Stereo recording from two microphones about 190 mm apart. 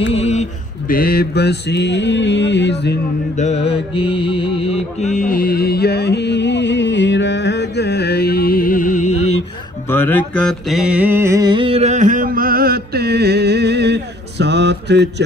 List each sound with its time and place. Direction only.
0.1 s a sound: 35° left (ahead or behind)
0.8 s mantra: 50° left (ahead or behind)
3.3 s mantra: 35° left (ahead or behind)
9.8 s mantra: 10° left (ahead or behind); by 15.2 s 65° right (ahead or behind)